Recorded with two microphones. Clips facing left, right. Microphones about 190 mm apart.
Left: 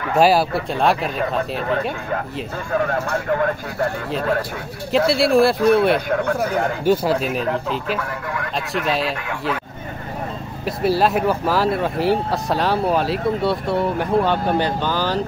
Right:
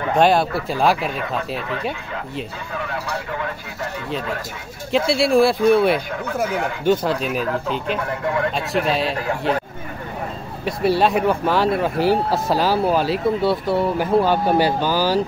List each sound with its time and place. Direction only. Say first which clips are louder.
0.1 s speech: left 1 dB; 5° left (ahead or behind)
2.7 s speech: left 7 dB; 45° left (ahead or behind)
4.9 s speech: left 1 dB; centre (ahead or behind)
5.9 s speech: left 6 dB; 55° left (ahead or behind)
6.4 s speech: left 2 dB; 40° left (ahead or behind)
6.8 s speech: even; 5° left (ahead or behind)
10.6 s speech: even; centre (ahead or behind)